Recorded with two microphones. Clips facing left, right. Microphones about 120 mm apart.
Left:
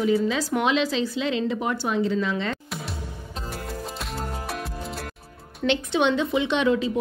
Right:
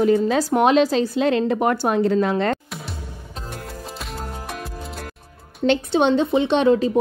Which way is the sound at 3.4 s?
Centre (ahead or behind).